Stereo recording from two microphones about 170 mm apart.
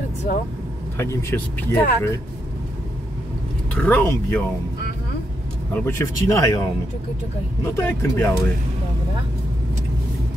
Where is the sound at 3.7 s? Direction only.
10° left (ahead or behind).